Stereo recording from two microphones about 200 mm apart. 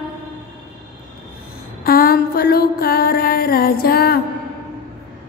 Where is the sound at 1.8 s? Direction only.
45° left (ahead or behind).